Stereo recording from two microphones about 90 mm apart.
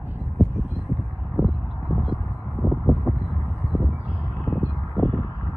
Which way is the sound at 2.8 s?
20° right (ahead or behind).